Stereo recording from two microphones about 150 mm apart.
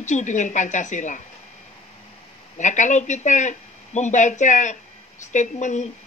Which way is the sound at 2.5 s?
55° left (ahead or behind).